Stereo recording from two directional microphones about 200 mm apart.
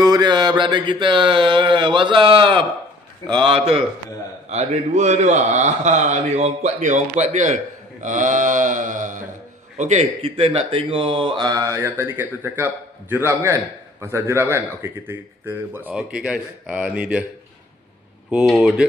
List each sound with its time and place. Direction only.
0.0 s a man's voice: 20° right (ahead or behind)
18.3 s speech: centre (ahead or behind)